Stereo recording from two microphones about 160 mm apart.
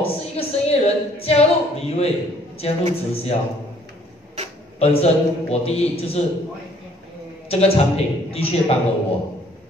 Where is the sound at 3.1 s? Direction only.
35° left (ahead or behind).